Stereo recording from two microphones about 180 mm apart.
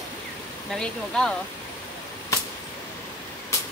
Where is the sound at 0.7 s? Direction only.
5° left (ahead or behind).